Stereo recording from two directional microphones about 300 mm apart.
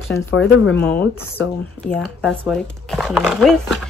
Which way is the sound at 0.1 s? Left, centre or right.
Left.